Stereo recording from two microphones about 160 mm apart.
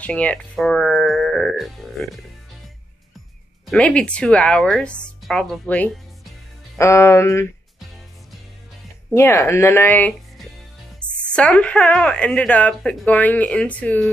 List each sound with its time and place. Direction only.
0.0 s speech: 10° left (ahead or behind)
3.6 s a woman's voice: 5° left (ahead or behind)
6.8 s a woman's voice: 15° left (ahead or behind)
9.1 s a woman's voice: 15° left (ahead or behind)
11.0 s music: 5° left (ahead or behind)
11.3 s a woman's voice: 5° left (ahead or behind)